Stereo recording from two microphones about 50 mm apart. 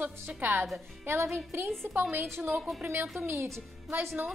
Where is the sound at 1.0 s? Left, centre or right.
Right.